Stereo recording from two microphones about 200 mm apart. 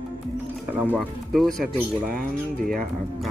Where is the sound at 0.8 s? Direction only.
5° left (ahead or behind).